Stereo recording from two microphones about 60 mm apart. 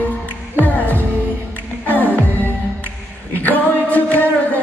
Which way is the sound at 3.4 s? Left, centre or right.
Left.